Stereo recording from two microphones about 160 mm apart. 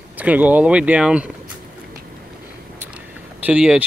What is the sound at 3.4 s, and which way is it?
Speech, 5° right (ahead or behind).